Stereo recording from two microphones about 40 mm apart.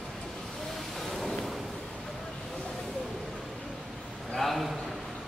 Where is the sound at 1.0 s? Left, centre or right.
Centre.